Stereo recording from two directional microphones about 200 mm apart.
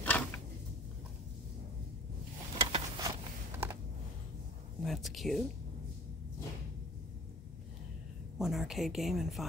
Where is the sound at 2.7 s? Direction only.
20° right (ahead or behind).